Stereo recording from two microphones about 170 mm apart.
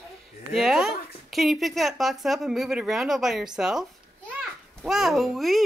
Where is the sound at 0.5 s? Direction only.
Centre (ahead or behind).